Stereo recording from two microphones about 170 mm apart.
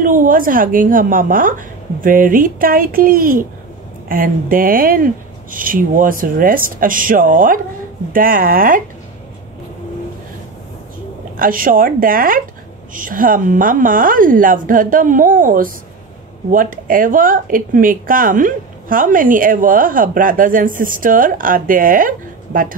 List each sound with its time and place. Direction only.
0.0 s speech: 55° right (ahead or behind)
11.3 s speech: 55° right (ahead or behind)